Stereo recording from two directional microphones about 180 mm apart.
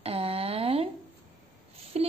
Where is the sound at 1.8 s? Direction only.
35° right (ahead or behind).